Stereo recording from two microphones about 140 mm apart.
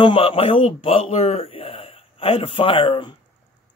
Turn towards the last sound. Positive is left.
turn(degrees=35)  # may be behind; listen again after turning